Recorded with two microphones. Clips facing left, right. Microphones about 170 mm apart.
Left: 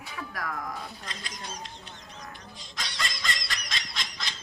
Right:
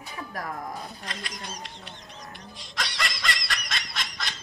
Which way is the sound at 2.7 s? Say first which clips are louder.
Right 4 dB; 70° right (ahead or behind).